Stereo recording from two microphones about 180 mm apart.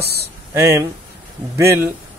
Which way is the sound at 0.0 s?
65° right (ahead or behind).